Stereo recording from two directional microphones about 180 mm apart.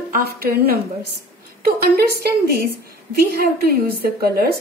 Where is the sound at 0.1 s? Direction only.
60° right (ahead or behind).